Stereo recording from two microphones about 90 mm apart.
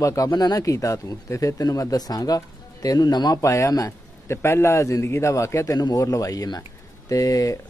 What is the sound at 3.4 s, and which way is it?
Speech, 35° left (ahead or behind).